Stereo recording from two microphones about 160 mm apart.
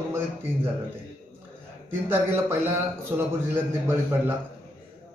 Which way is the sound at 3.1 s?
15° right (ahead or behind).